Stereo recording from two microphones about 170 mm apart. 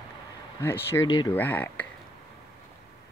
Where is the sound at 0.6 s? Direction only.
15° left (ahead or behind).